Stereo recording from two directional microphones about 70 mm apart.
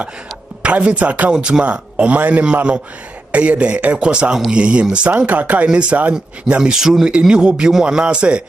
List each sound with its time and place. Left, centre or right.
0.6 s a man's voice: centre